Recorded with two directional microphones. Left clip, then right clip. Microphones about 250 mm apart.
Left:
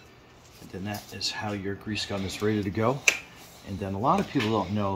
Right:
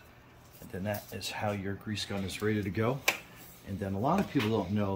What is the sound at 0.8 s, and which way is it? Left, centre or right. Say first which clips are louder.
Speech: left 4 dB; centre.